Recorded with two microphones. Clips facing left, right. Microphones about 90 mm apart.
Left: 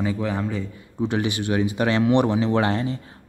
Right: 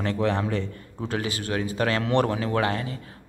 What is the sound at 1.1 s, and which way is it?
Speech, 20° left (ahead or behind).